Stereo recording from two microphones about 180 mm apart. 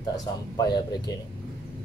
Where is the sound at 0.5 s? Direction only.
20° left (ahead or behind).